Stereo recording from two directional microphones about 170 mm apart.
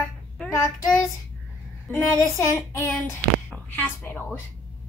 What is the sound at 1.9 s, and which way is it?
Child singing, 15° left (ahead or behind).